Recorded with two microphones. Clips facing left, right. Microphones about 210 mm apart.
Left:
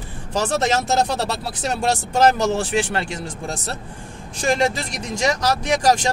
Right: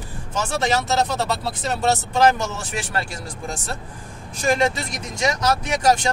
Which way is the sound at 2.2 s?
35° left (ahead or behind).